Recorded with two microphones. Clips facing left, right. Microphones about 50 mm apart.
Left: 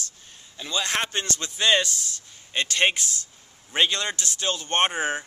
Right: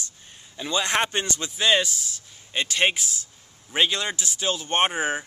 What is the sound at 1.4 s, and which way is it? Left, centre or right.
Speech, centre.